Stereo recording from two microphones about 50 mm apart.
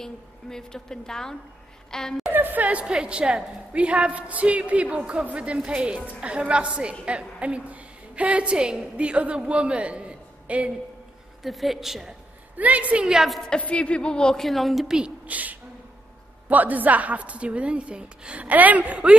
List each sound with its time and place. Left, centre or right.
0.0 s a woman's voice: centre
2.3 s a woman's voice: right
11.4 s a woman's voice: centre
12.5 s a woman's voice: right
13.1 s a woman's voice: centre
13.6 s speech: left
14.4 s a woman's voice: centre
14.9 s a woman's voice: centre
15.2 s a woman's voice: right